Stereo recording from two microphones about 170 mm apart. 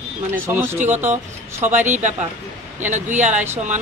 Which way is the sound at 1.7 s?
45° right (ahead or behind).